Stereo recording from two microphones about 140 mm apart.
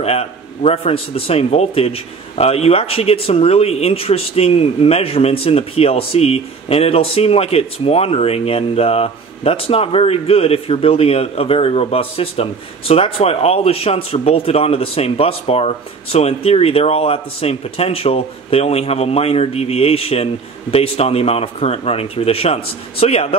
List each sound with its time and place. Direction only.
0.0 s a man's voice: 45° left (ahead or behind)